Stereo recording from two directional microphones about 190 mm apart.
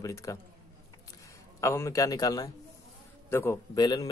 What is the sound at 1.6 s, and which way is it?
Speech, 15° left (ahead or behind).